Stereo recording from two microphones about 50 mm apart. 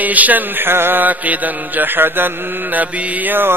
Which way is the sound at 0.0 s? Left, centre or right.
Right.